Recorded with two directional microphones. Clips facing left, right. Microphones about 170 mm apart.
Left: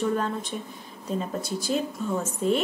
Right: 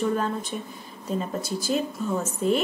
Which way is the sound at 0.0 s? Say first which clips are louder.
Right 1 dB; 5° right (ahead or behind).